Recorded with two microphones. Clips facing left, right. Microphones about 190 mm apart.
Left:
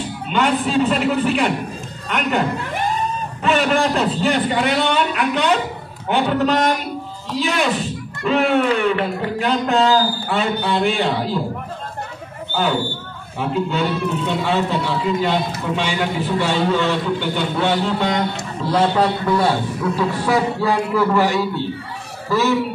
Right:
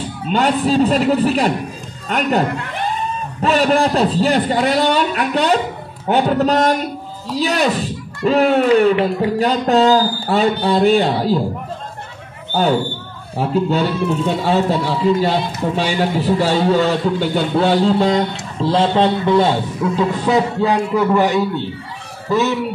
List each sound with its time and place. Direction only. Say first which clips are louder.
0.3 s a man's voice: right 3 dB; 35° right (ahead or behind)
3.4 s a man's voice: right 3 dB; 35° right (ahead or behind)
13.4 s a man's voice: right 4 dB; 40° right (ahead or behind); by 22.6 s 20° right (ahead or behind)